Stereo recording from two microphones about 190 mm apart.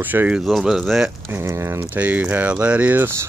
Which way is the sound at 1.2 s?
15° right (ahead or behind).